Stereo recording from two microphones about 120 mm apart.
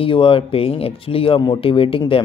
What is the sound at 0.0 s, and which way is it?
Speech, 50° left (ahead or behind).